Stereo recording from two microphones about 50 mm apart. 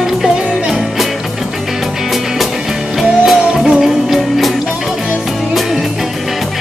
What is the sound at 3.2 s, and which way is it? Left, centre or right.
Music, centre.